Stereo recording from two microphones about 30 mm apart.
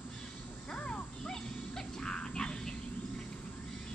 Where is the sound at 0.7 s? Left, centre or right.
Left.